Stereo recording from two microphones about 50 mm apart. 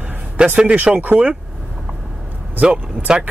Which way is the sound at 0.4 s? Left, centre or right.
Right.